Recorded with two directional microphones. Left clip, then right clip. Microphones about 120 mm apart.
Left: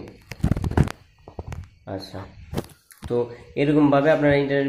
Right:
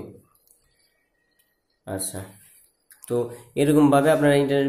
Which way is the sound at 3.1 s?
25° right (ahead or behind).